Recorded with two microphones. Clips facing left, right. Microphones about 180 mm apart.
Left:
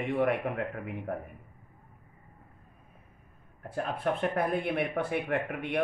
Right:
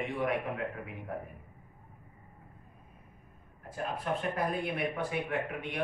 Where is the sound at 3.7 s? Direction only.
60° left (ahead or behind).